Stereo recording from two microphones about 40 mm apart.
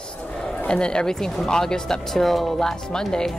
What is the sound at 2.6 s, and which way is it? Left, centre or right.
Speech, centre.